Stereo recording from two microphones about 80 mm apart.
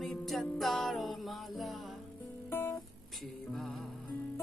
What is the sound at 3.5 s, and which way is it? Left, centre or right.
Music, centre.